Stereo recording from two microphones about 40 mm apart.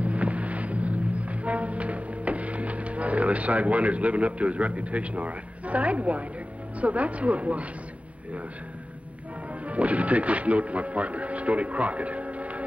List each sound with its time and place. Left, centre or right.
0.0 s vehicle: right
6.8 s speech: right
9.7 s speech: right